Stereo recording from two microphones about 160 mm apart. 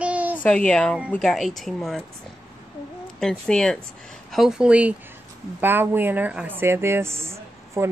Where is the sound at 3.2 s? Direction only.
5° left (ahead or behind).